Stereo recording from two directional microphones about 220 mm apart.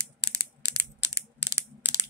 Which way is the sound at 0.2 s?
15° right (ahead or behind).